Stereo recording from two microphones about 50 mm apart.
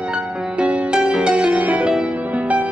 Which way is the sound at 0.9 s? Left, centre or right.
Centre.